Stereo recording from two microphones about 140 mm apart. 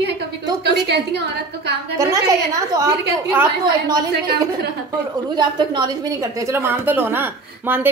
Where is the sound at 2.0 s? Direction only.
25° right (ahead or behind).